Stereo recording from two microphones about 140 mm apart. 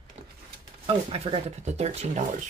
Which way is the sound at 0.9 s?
40° right (ahead or behind).